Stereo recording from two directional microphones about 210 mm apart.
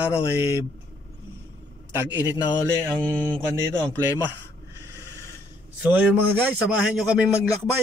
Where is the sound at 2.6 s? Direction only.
5° left (ahead or behind).